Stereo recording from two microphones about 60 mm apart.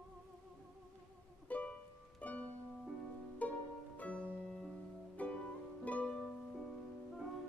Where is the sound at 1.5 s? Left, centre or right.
Left.